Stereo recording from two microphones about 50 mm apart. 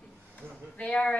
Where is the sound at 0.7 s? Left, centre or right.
Left.